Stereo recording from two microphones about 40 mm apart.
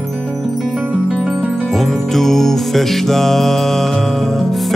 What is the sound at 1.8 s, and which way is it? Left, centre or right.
Music, centre.